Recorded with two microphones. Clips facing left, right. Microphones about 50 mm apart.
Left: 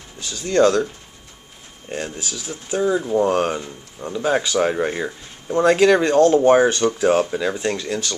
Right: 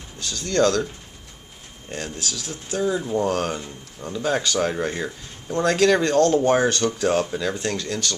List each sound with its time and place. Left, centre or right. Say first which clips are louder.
0.2 s speech: left 4 dB; centre
1.9 s speech: left 3 dB; centre
3.3 s speech: left 4 dB; left